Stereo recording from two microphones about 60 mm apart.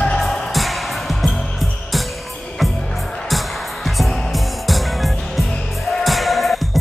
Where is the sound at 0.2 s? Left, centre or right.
Centre.